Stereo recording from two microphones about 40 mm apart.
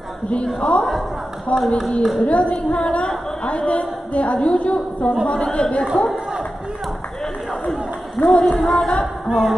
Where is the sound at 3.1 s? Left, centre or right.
Centre.